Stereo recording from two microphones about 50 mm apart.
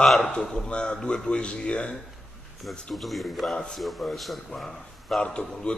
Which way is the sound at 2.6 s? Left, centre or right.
Centre.